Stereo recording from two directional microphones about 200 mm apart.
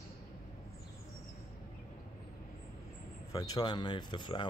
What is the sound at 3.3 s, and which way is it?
Speech, 20° left (ahead or behind).